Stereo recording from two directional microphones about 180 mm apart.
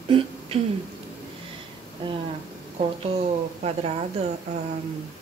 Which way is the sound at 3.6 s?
35° right (ahead or behind).